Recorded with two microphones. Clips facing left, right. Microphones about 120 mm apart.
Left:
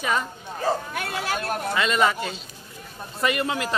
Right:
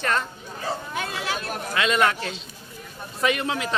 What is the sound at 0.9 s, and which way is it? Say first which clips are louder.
Speech: left 1 dB; 55° left (ahead or behind).